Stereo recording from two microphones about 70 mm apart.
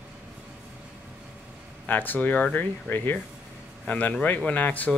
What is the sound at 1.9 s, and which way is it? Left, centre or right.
Speech, left.